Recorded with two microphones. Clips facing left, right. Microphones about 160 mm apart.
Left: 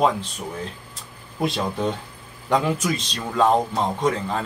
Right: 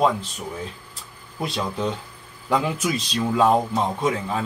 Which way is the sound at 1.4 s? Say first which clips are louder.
Left 2 dB; centre (ahead or behind).